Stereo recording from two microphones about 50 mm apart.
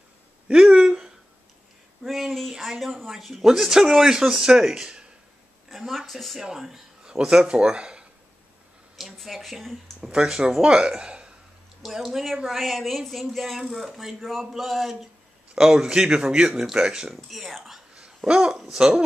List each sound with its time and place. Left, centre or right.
0.5 s a sound: centre
2.0 s a sound: centre
3.4 s speech: centre
5.7 s speech: centre
6.4 s speech: centre
8.9 s a sound: centre
10.0 s speech: centre
11.0 s a sound: centre
11.8 s speech: centre
15.5 s speech: centre
17.1 s speech: centre
17.9 s babbling: centre
18.8 s speech: centre